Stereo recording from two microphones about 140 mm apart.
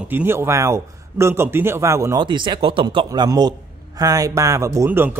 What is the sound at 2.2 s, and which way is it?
A man's voice, 35° right (ahead or behind).